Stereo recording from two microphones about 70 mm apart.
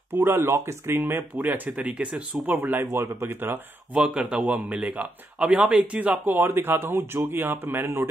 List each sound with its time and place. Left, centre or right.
0.1 s speech: right; by 2.2 s centre
2.4 s speech: right
3.9 s a man's voice: centre; by 8.1 s right